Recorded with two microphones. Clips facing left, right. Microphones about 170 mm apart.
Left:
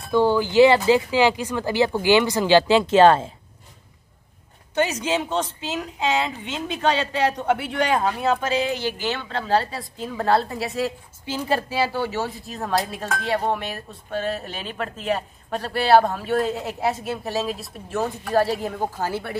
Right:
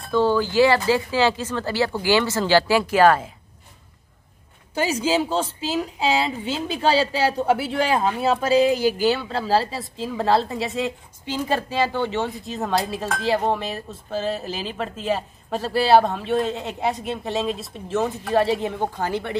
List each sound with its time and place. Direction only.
0.1 s speech: 15° left (ahead or behind)
4.7 s a woman's voice: 30° right (ahead or behind)
8.4 s a woman's voice: 35° right (ahead or behind)
9.2 s a woman's voice: 5° right (ahead or behind)